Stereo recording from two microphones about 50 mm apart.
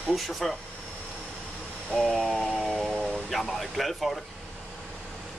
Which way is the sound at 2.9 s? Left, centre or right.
Centre.